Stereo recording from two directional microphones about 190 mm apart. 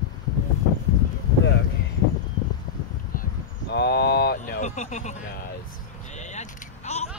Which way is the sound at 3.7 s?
60° left (ahead or behind).